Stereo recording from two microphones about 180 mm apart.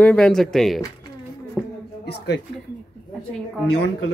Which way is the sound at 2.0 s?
65° left (ahead or behind).